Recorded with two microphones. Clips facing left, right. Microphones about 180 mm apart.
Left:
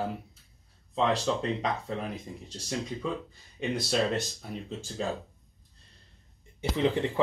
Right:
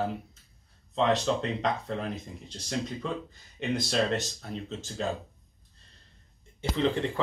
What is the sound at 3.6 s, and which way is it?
Speech, 10° left (ahead or behind).